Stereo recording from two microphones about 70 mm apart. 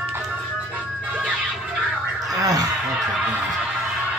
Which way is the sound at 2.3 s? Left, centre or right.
Right.